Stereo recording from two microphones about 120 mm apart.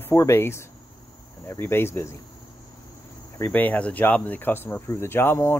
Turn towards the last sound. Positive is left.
turn(degrees=20)  # may be behind; listen again after turning